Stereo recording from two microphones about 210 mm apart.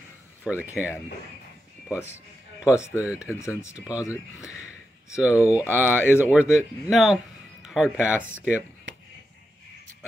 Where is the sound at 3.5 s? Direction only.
5° right (ahead or behind).